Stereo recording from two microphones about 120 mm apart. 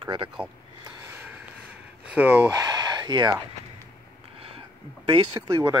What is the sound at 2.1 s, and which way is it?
Speech, 15° right (ahead or behind).